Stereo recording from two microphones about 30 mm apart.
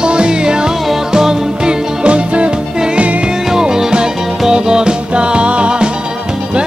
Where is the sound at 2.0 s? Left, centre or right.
Right.